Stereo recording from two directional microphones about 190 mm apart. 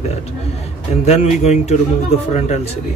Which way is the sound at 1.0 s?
35° left (ahead or behind).